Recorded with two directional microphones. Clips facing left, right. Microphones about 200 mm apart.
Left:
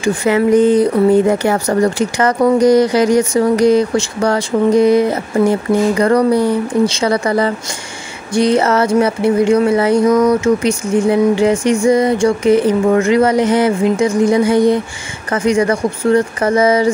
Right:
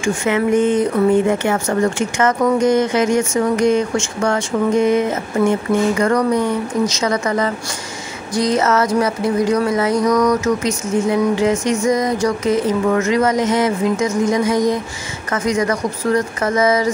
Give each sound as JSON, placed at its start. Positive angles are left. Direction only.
{"t": 0.0, "sound": "speech", "side_deg": 35}